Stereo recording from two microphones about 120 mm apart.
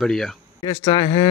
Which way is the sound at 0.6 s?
45° left (ahead or behind).